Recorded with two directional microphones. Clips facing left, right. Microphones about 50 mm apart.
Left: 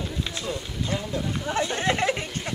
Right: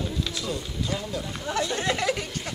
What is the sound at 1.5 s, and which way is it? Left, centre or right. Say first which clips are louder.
Chatter: left 1 dB; left.